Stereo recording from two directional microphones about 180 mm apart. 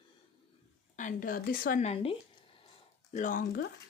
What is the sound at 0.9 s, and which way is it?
Speech, 45° left (ahead or behind).